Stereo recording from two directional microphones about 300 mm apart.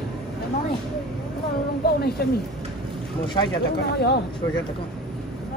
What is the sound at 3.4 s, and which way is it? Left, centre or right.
Speech, centre.